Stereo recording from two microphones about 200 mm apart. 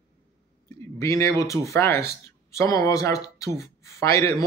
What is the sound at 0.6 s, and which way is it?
Speech, 15° left (ahead or behind).